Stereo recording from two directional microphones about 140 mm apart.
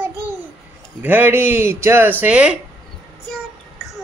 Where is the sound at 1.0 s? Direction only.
10° right (ahead or behind).